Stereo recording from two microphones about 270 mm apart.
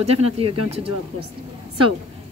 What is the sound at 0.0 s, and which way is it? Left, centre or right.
Speech, right.